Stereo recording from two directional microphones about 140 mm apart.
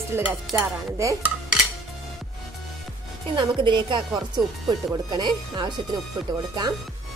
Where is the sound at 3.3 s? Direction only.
35° right (ahead or behind).